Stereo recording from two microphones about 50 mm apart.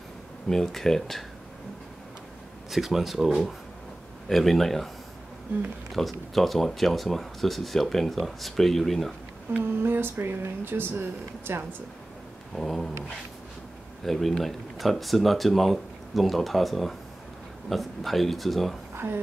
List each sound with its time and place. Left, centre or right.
0.5 s speech: centre
2.7 s speech: centre
4.3 s speech: centre
5.9 s speech: centre
9.6 s speech: right
12.5 s speech: centre
14.0 s speech: centre
18.9 s a sound: right